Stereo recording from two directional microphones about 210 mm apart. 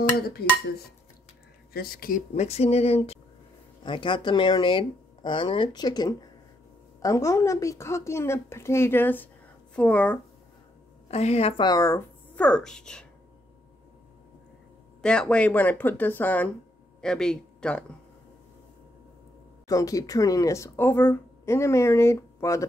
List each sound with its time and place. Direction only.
0.4 s speech: 50° left (ahead or behind)
1.7 s speech: 45° left (ahead or behind); by 10.1 s 5° left (ahead or behind)
11.1 s speech: 30° left (ahead or behind); by 13.0 s 5° left (ahead or behind)
15.0 s speech: 5° left (ahead or behind)
19.7 s speech: 15° left (ahead or behind)